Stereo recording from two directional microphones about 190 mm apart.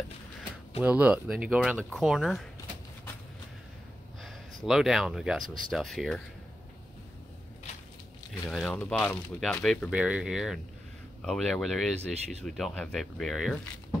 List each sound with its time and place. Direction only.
0.7 s speech: 5° right (ahead or behind)
4.6 s speech: centre (ahead or behind)
8.5 s speech: centre (ahead or behind)